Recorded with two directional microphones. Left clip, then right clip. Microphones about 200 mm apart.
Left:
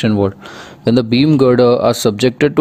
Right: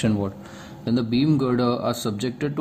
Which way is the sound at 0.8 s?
50° left (ahead or behind).